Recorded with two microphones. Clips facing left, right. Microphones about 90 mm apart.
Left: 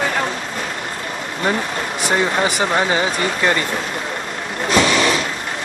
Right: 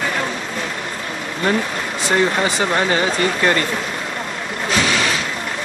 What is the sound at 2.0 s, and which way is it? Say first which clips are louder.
Speech: right 1 dB; 15° left (ahead or behind).